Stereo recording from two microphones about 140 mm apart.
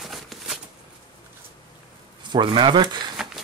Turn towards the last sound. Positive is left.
turn(degrees=-35)  # may be behind; listen again after turning